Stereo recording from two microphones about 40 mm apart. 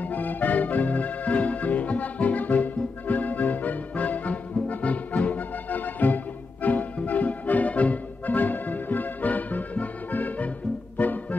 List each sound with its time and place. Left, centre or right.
0.0 s music: left